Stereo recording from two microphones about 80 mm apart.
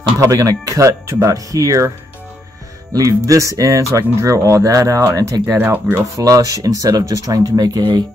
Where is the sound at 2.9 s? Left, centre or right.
Right.